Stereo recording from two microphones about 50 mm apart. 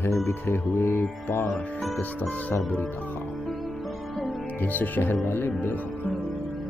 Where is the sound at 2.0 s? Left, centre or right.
Left.